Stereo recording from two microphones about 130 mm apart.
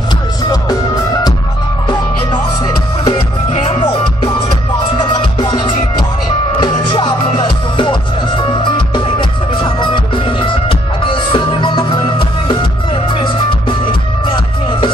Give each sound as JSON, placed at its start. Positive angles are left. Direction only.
{"t": 1.9, "sound": "music", "side_deg": 35}
{"t": 3.5, "sound": "music", "side_deg": 45}
{"t": 4.9, "sound": "music", "side_deg": 35}